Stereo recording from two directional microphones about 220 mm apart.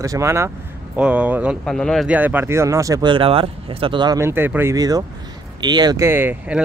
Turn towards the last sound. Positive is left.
turn(degrees=-10)  # may be behind; listen again after turning